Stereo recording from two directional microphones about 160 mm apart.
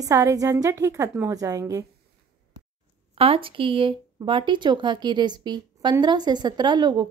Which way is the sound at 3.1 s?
35° right (ahead or behind).